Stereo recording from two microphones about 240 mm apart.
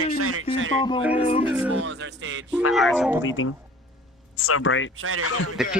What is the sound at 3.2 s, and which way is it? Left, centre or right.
Speech, left.